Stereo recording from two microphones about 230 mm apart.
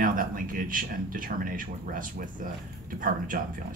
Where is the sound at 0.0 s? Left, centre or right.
Right.